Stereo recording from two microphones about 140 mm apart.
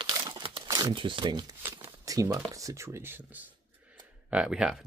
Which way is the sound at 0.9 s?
40° right (ahead or behind).